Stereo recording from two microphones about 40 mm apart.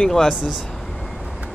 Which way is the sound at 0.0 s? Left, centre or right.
Centre.